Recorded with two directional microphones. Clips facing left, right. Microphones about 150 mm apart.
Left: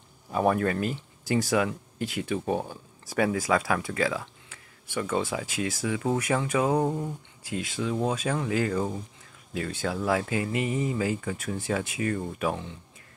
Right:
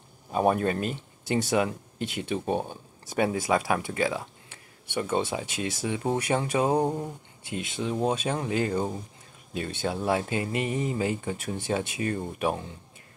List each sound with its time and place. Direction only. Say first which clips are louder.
0.3 s speech: even; 20° right (ahead or behind)